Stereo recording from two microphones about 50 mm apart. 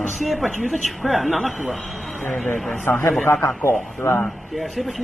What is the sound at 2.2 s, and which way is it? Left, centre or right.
Speech, left.